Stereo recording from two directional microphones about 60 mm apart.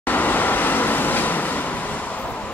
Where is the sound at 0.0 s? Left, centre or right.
Left.